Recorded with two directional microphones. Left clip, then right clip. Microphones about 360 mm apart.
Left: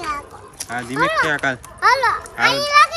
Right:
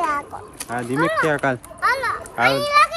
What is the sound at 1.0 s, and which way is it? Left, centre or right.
Speech, centre.